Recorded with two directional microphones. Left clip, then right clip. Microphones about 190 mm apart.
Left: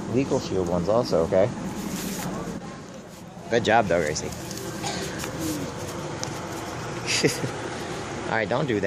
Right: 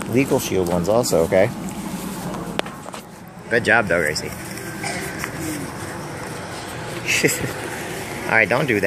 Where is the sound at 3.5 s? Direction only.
5° left (ahead or behind).